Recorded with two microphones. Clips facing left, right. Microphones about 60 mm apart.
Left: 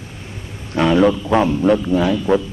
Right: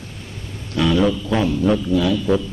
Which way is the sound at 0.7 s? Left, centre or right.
Left.